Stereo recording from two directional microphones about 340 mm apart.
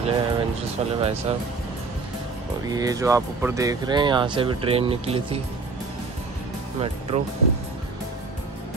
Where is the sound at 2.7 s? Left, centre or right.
Centre.